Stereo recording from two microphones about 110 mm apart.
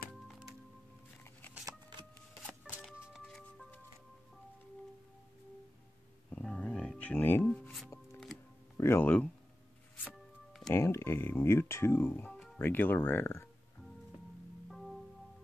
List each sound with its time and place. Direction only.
0.1 s music: 5° right (ahead or behind)
1.7 s a sound: 45° right (ahead or behind)
3.3 s music: 5° left (ahead or behind)
6.3 s music: 10° left (ahead or behind)
8.7 s speech: 20° left (ahead or behind)
10.7 s speech: 25° left (ahead or behind)
14.7 s music: centre (ahead or behind)